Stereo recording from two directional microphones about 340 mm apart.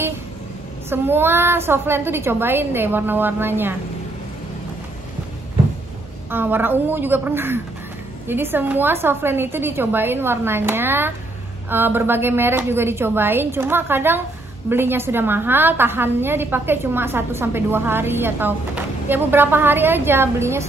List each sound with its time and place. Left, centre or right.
0.8 s a woman's voice: centre
6.3 s a woman's voice: centre